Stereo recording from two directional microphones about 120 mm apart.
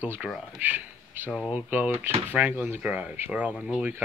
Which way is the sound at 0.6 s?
15° right (ahead or behind).